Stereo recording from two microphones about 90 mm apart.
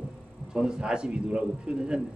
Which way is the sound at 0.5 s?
10° right (ahead or behind).